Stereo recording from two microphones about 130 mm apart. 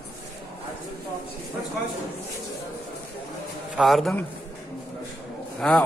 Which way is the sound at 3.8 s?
Centre (ahead or behind).